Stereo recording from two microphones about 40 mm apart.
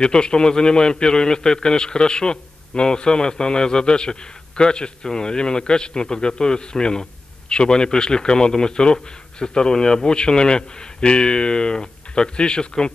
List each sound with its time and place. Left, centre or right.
0.0 s a man's voice: left